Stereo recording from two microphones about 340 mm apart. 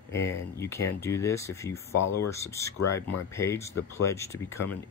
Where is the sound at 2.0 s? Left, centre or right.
Left.